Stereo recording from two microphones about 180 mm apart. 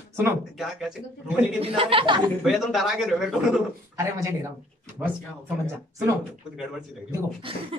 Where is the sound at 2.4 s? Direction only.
Centre (ahead or behind).